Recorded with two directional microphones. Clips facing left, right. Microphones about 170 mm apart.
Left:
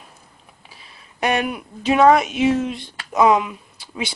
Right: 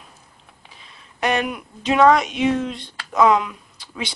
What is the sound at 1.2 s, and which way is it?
Speech, 10° left (ahead or behind).